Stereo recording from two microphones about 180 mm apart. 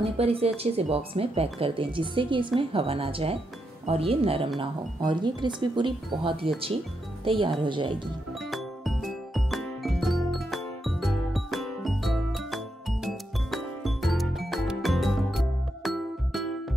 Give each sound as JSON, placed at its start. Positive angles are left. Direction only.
{"t": 0.0, "sound": "speech", "side_deg": -35}
{"t": 8.5, "sound": "music", "side_deg": 0}